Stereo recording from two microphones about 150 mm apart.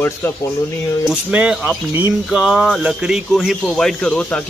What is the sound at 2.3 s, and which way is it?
Speech, 5° right (ahead or behind).